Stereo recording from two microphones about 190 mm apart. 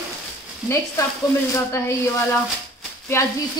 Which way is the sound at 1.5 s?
15° left (ahead or behind).